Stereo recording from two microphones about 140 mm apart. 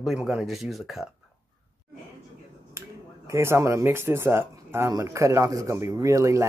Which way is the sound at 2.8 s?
20° right (ahead or behind).